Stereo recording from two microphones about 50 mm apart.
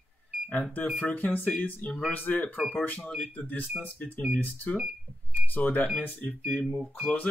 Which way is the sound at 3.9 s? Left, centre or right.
Left.